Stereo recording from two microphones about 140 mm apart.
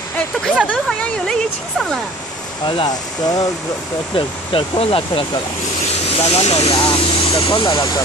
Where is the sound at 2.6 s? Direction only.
35° left (ahead or behind).